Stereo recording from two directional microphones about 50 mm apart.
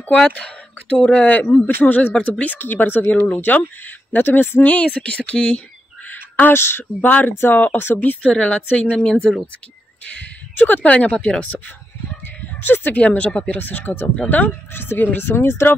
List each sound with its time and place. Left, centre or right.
0.9 s speech: left
4.6 s speech: left
6.0 s a sound: left
6.6 s speech: left
8.2 s speech: left
8.9 s speech: centre
10.0 s speech: left
12.6 s speech: left
13.0 s speech: left
14.7 s speech: left